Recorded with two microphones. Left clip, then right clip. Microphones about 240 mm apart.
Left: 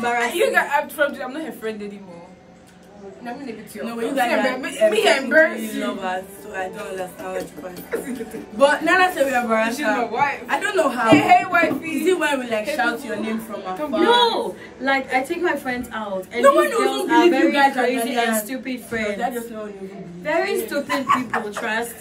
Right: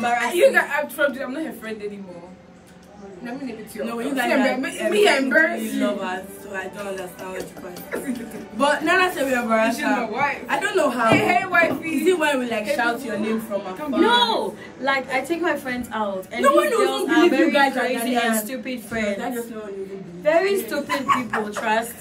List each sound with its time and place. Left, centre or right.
0.2 s a woman's voice: centre
3.8 s a woman's voice: centre
8.5 s a man's voice: centre
20.2 s a man's voice: centre